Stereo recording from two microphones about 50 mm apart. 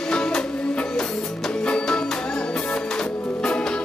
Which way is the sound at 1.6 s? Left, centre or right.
Centre.